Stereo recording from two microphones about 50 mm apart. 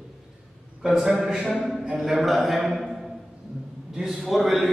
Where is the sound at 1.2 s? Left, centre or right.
Centre.